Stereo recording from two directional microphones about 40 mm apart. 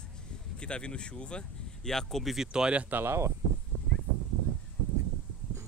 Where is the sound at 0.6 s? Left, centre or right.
Left.